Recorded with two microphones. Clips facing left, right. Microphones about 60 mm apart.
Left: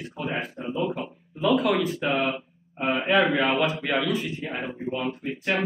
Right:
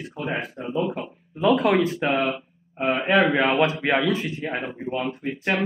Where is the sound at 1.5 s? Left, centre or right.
Right.